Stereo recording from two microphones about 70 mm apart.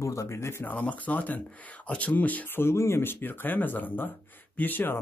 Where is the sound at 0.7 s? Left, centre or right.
Left.